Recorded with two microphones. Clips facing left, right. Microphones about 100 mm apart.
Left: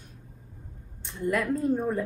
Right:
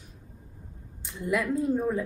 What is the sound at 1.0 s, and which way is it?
A woman's voice, 5° right (ahead or behind).